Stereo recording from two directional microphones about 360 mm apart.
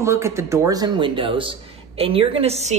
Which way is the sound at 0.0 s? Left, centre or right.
Centre.